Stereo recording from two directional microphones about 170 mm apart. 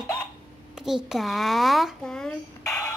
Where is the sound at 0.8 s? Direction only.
Centre (ahead or behind).